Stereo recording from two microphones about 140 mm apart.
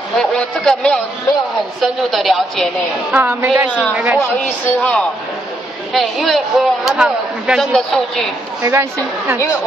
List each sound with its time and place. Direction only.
0.2 s speech: 5° left (ahead or behind)
3.2 s a woman's voice: 10° right (ahead or behind)
4.2 s a man's voice: 15° left (ahead or behind)
8.6 s a woman's voice: 20° right (ahead or behind)